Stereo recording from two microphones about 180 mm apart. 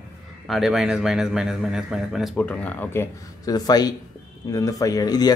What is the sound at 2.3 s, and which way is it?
Speech, 10° left (ahead or behind).